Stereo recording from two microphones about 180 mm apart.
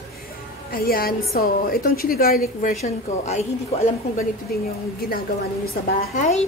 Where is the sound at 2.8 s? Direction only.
40° left (ahead or behind).